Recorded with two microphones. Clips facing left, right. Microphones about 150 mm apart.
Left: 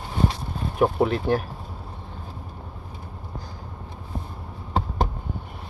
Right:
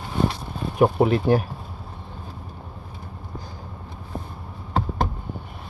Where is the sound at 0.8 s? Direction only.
5° right (ahead or behind).